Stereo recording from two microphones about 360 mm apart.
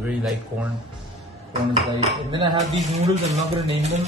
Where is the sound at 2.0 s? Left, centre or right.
Centre.